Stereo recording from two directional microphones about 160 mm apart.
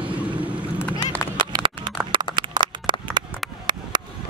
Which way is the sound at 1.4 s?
30° right (ahead or behind).